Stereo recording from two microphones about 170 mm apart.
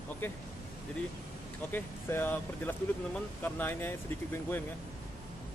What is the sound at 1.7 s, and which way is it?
Speech, 10° left (ahead or behind).